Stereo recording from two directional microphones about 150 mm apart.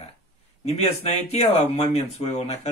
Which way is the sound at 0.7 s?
45° left (ahead or behind).